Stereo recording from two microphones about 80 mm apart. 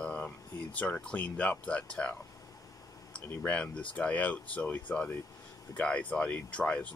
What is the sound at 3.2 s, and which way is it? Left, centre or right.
Speech, centre.